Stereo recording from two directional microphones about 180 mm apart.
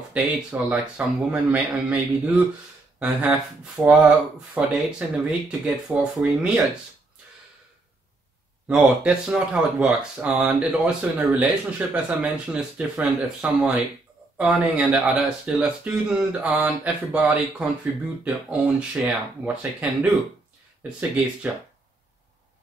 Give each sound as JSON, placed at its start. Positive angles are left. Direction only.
{"t": 0.1, "sound": "speech", "side_deg": -5}
{"t": 8.6, "sound": "speech", "side_deg": -5}
{"t": 21.5, "sound": "speech", "side_deg": -10}